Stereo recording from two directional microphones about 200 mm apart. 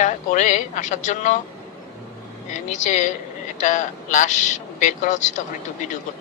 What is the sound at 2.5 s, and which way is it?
Speech, 35° left (ahead or behind).